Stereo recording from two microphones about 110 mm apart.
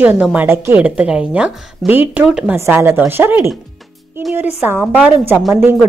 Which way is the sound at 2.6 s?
25° right (ahead or behind).